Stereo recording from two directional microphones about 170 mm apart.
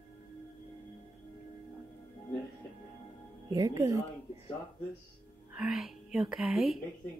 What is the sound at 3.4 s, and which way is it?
Speech, 20° right (ahead or behind).